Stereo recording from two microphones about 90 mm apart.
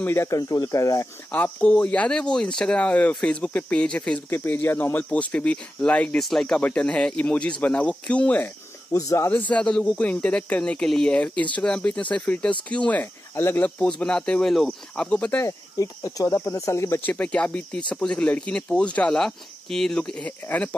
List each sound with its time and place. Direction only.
0.0 s speech: 30° left (ahead or behind)
0.4 s speech: 40° left (ahead or behind)
1.3 s speech: 15° left (ahead or behind)
4.3 s speech: 25° left (ahead or behind)
8.9 s speech: 35° left (ahead or behind)
9.5 s speech: 10° left (ahead or behind)
13.4 s speech: 30° left (ahead or behind)
13.7 s speech: 10° left (ahead or behind)
15.3 s speech: 35° left (ahead or behind)
17.0 s speech: 15° left (ahead or behind)